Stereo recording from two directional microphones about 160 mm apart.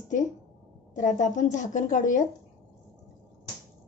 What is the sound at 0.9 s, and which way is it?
A woman's voice, 50° left (ahead or behind).